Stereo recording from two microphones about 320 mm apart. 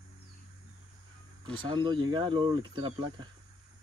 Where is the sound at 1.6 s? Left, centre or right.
Centre.